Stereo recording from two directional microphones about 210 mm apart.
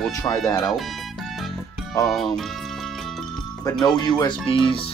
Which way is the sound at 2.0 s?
Centre (ahead or behind).